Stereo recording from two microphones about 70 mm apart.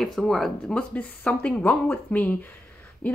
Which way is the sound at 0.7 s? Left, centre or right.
Centre.